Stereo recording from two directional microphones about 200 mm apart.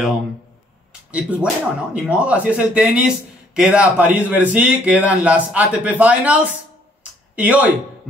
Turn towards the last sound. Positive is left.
turn(degrees=-10)  # may be behind; listen again after turning